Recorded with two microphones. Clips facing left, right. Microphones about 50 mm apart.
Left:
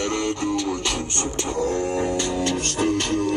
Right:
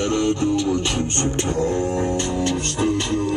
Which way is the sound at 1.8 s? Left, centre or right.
Left.